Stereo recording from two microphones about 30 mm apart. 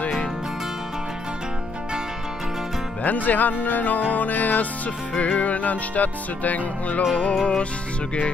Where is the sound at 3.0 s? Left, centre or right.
Left.